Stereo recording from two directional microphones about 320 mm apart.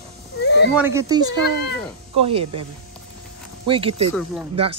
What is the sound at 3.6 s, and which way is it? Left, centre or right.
Speech, centre.